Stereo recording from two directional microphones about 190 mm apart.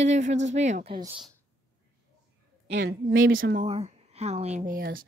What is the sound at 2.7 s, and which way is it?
A woman's voice, 60° right (ahead or behind).